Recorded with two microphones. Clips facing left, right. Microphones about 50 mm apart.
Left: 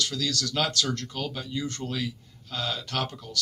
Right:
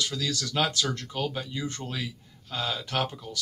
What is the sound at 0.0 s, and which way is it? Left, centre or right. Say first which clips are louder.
Speech: left 1 dB; centre.